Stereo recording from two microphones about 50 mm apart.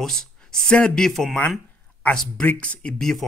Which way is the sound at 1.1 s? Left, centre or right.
Centre.